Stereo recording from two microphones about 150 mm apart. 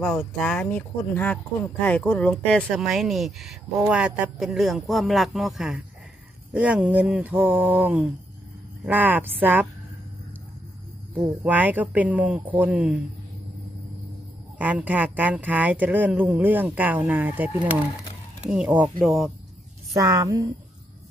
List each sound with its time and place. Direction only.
0.0 s speech: 5° left (ahead or behind); by 9.7 s 10° right (ahead or behind)
11.1 s speech: 10° right (ahead or behind)
14.6 s speech: 10° right (ahead or behind)
18.5 s speech: 5° right (ahead or behind)
19.9 s a woman's voice: 25° right (ahead or behind)